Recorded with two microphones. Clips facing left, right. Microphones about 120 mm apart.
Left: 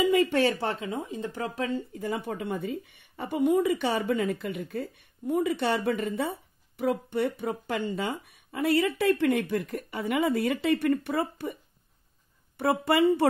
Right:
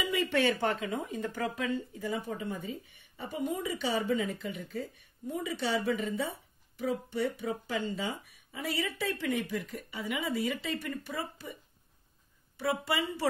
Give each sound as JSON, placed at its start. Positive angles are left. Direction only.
{"t": 0.0, "sound": "speech", "side_deg": 45}
{"t": 2.0, "sound": "speech", "side_deg": 60}
{"t": 12.5, "sound": "speech", "side_deg": 60}